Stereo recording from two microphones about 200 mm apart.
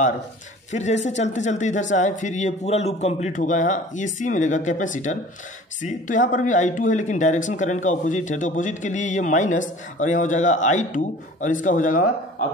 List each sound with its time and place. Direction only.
0.7 s speech: 35° left (ahead or behind)